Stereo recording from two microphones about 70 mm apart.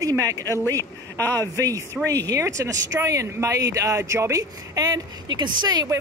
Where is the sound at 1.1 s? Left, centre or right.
Left.